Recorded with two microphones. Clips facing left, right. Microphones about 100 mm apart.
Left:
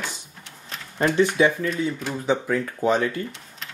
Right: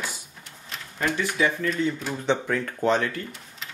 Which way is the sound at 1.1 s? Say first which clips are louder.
Left 7 dB; 25° left (ahead or behind).